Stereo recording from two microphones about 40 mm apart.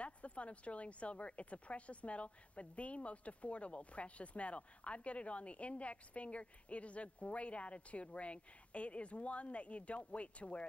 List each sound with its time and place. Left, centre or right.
0.0 s speech: left